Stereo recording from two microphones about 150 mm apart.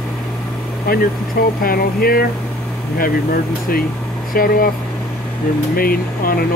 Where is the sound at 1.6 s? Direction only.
80° left.